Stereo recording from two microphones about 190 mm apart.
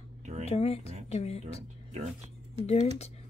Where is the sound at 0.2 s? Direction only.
40° right (ahead or behind).